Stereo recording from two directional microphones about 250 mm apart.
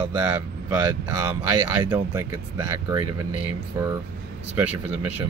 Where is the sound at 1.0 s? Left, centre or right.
Centre.